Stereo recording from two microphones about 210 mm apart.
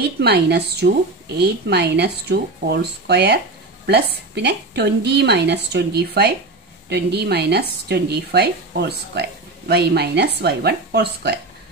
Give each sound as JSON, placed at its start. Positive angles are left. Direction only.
{"t": 0.2, "sound": "a woman's voice", "side_deg": -50}